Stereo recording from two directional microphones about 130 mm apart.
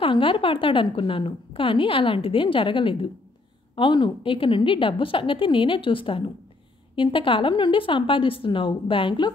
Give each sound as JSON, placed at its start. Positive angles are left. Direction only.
{"t": 0.0, "sound": "a woman's voice", "side_deg": 40}